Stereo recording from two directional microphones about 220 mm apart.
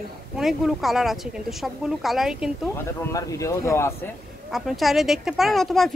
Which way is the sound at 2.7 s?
15° left (ahead or behind).